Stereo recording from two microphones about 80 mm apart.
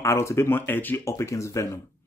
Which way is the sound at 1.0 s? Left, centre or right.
Left.